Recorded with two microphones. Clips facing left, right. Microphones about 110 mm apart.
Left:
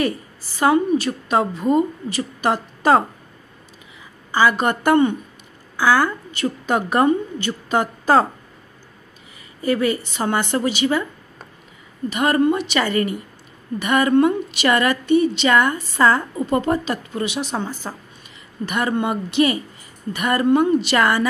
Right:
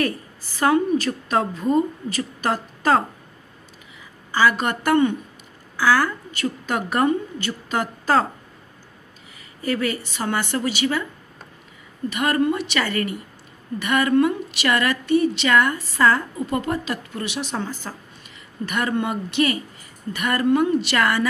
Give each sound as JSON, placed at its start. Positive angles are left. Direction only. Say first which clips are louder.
{"t": 0.6, "sound": "a woman's voice", "louder": "left 2 dB", "side_deg": 15}
{"t": 4.3, "sound": "a woman's voice", "louder": "left 2 dB", "side_deg": 20}
{"t": 9.7, "sound": "a woman's voice", "louder": "left 4 dB", "side_deg": 20}
{"t": 12.1, "sound": "a woman's voice", "louder": "left 3 dB", "side_deg": 25}